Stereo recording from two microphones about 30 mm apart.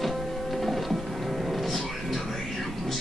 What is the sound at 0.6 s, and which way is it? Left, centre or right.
Music, centre.